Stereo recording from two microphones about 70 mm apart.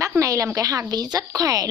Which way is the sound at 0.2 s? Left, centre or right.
Right.